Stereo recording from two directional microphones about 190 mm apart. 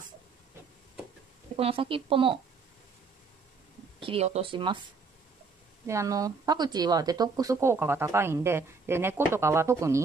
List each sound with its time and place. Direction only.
1.6 s a woman's voice: 30° right (ahead or behind)
4.0 s a woman's voice: 30° right (ahead or behind)
5.9 s speech: 15° right (ahead or behind)